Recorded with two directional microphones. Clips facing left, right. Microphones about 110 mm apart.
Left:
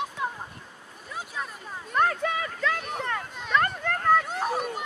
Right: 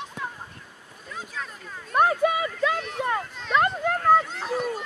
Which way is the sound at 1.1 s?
15° left (ahead or behind).